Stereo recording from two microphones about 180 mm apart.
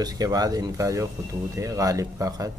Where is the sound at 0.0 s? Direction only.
20° right (ahead or behind).